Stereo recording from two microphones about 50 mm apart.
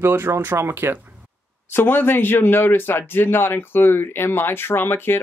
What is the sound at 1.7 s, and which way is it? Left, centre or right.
Speech, left.